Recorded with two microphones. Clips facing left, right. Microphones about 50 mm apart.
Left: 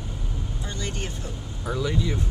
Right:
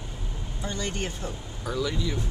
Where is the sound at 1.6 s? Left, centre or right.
Centre.